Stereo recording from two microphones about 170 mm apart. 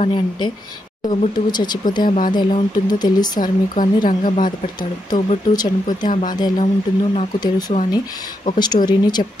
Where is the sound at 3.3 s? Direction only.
50° left (ahead or behind).